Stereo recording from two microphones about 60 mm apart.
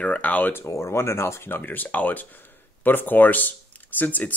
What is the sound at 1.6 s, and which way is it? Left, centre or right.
Speech, left.